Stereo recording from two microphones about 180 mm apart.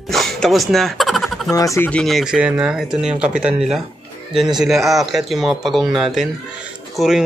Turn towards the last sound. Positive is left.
turn(degrees=0)  # may be behind; listen again after turning